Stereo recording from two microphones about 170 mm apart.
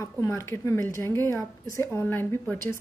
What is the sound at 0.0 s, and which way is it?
A woman's voice, 15° left (ahead or behind).